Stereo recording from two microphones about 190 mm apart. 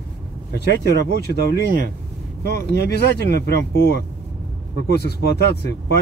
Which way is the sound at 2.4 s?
60° left (ahead or behind).